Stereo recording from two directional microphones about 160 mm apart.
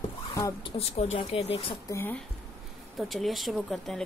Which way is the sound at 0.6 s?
40° left (ahead or behind).